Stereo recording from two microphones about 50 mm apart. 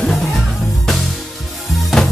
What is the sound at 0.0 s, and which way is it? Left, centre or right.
Music, centre.